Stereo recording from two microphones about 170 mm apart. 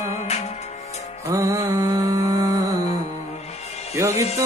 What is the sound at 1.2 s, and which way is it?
Music, 20° right (ahead or behind).